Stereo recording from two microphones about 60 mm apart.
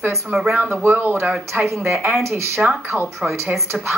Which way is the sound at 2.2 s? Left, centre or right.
Right.